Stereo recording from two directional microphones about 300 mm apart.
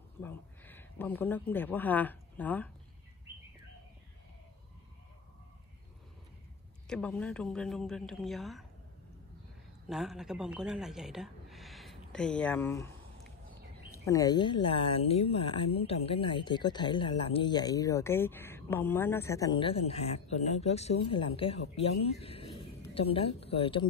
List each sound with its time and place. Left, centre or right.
0.2 s speech: centre
6.9 s speech: centre
9.8 s speech: centre
14.0 s speech: centre